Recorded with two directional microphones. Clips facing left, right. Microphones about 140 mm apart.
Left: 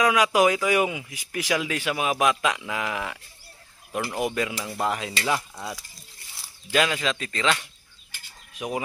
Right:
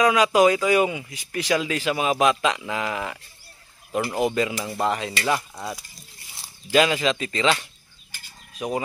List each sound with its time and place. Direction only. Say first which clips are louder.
0.0 s a man's voice: right 3 dB; centre (ahead or behind)
8.5 s speech: right 3 dB; 5° left (ahead or behind)